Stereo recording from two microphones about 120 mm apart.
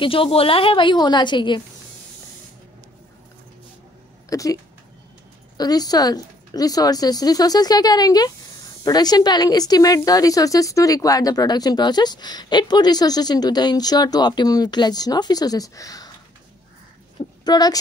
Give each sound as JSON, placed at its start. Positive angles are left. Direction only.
{"t": 0.0, "sound": "a woman's voice", "side_deg": 50}
{"t": 4.3, "sound": "speech", "side_deg": 30}
{"t": 5.6, "sound": "a woman's voice", "side_deg": 35}
{"t": 17.5, "sound": "a woman's voice", "side_deg": 35}